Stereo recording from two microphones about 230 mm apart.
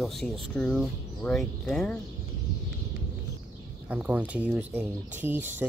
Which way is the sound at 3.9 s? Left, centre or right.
Centre.